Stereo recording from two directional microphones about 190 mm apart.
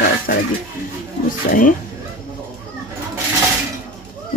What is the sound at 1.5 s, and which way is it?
Speech, 45° left (ahead or behind).